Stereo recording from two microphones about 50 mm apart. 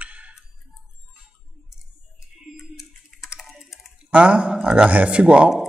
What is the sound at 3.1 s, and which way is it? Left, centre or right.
Typing, centre.